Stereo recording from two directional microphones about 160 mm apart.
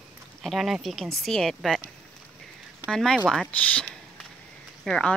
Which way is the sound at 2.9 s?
5° left (ahead or behind).